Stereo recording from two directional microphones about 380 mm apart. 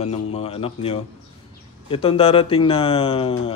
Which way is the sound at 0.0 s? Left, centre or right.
Centre.